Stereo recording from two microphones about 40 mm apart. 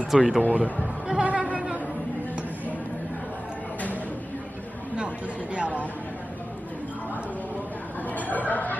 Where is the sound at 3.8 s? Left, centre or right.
Left.